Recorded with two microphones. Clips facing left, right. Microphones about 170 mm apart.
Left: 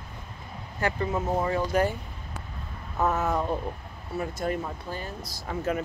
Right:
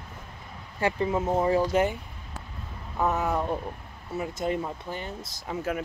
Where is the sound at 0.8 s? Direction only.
25° right (ahead or behind).